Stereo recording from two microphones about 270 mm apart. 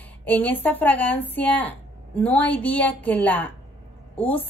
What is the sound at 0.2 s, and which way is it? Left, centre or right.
Speech, centre.